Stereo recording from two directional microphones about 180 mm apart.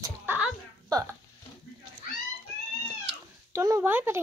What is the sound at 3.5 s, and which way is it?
Speech, 15° right (ahead or behind).